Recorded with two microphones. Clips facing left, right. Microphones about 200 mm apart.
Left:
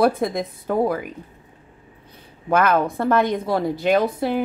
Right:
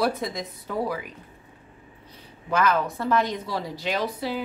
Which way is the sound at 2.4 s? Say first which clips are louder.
Left 5 dB; 55° left (ahead or behind).